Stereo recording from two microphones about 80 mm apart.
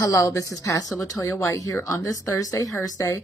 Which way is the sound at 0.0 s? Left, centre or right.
Left.